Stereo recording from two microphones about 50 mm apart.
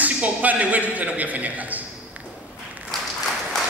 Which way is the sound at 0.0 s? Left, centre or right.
Right.